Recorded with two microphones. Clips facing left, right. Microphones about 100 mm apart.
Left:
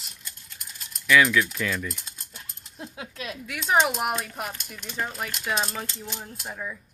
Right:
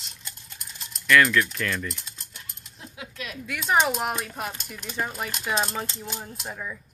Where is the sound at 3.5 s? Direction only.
5° left (ahead or behind).